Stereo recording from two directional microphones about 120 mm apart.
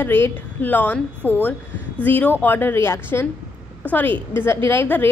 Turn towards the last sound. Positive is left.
turn(degrees=15)  # may be behind; listen again after turning